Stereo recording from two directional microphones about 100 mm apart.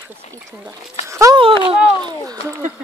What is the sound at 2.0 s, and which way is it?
Speech, 40° right (ahead or behind).